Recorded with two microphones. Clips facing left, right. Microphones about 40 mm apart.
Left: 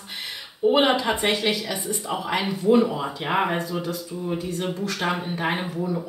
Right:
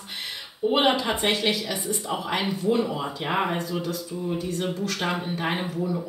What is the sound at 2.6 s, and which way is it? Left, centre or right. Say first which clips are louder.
Speech: left 8 dB; centre.